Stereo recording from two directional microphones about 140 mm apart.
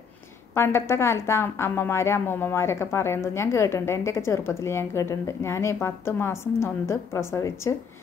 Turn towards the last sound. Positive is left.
turn(degrees=20)  # may be behind; listen again after turning